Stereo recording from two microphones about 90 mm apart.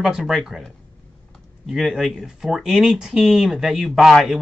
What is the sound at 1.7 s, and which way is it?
Speech, centre (ahead or behind).